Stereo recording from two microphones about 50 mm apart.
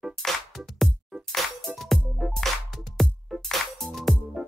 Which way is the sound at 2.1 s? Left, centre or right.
Centre.